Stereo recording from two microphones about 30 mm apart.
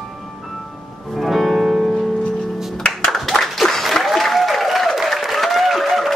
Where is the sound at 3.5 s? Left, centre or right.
Centre.